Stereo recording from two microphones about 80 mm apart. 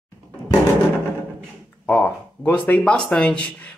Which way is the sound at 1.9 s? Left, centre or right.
Left.